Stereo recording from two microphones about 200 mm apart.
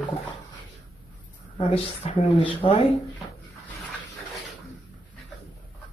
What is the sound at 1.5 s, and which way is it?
Speech, 35° left (ahead or behind).